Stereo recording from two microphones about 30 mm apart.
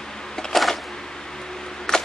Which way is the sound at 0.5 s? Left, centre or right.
Centre.